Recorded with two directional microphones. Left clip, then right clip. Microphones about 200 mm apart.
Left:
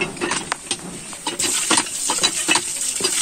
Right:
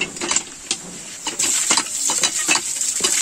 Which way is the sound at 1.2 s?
35° right (ahead or behind).